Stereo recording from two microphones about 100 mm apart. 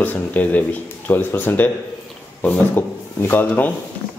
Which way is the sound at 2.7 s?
20° left (ahead or behind).